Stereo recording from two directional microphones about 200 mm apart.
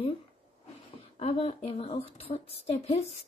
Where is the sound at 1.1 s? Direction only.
30° left (ahead or behind).